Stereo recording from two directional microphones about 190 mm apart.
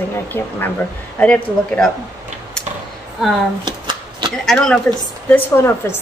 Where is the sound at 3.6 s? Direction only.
20° right (ahead or behind).